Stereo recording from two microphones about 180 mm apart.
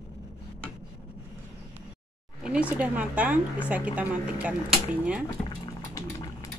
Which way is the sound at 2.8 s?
10° right (ahead or behind).